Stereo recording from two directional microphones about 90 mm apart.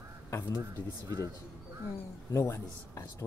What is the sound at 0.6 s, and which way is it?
Speech, 40° right (ahead or behind).